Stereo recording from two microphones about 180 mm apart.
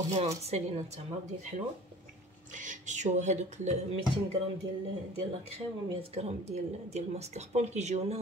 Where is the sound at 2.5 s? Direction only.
45° right (ahead or behind).